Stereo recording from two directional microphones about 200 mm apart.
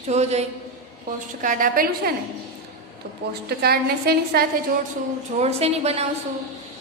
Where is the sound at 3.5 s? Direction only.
50° right (ahead or behind).